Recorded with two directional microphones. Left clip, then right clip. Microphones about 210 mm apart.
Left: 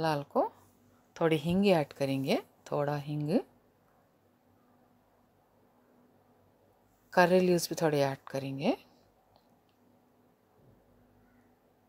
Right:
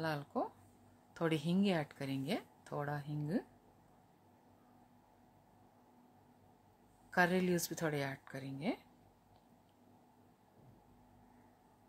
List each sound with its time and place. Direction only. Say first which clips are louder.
0.0 s speech: left 10 dB; 25° left (ahead or behind)
7.1 s speech: left 9 dB; 20° left (ahead or behind)